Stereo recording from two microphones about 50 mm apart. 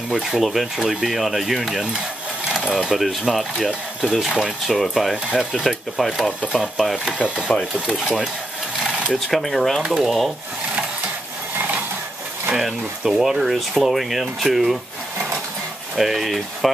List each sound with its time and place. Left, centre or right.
0.1 s speech: centre
7.5 s speech: centre
7.8 s speech: centre
9.1 s speech: centre
12.5 s speech: centre
16.0 s speech: centre